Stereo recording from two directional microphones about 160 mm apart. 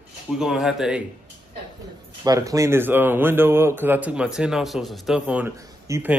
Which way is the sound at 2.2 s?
20° right (ahead or behind).